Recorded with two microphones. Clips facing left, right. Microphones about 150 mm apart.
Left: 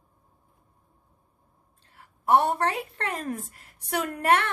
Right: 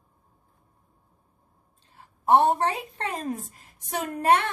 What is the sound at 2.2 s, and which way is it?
A woman's voice, 20° right (ahead or behind).